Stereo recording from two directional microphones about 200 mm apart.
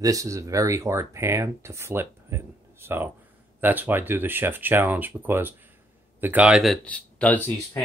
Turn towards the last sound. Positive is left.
turn(degrees=10)  # may be behind; listen again after turning